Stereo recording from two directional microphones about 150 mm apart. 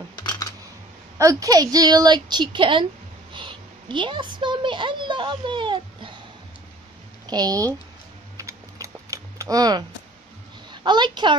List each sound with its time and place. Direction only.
0.1 s camera: 25° left (ahead or behind)
1.1 s a woman's voice: 20° right (ahead or behind)
7.2 s a woman's voice: 25° right (ahead or behind)
8.4 s typing: 20° right (ahead or behind)
10.7 s a woman's voice: 30° right (ahead or behind)